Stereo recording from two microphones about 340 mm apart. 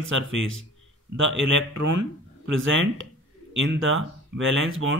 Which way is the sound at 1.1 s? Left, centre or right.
Right.